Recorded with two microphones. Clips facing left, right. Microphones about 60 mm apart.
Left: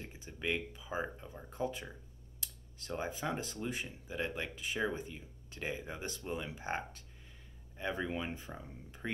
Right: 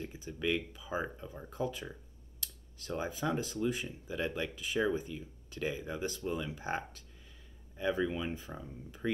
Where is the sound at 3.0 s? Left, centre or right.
Left.